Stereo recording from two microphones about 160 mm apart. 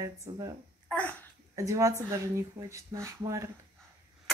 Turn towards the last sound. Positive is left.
turn(degrees=-20)  # may be behind; listen again after turning